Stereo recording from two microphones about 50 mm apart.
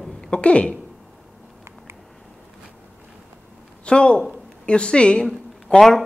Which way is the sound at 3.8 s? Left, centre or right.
Centre.